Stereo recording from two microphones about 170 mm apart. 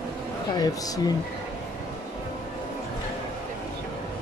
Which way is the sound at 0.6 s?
20° left (ahead or behind).